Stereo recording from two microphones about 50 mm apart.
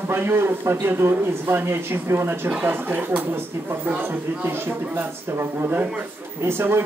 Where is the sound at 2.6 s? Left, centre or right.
Right.